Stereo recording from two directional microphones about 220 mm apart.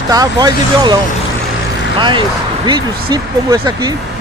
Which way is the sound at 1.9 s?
20° right (ahead or behind).